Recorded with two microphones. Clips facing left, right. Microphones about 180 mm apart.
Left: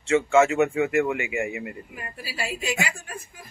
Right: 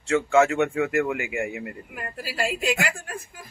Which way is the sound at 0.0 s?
Centre (ahead or behind).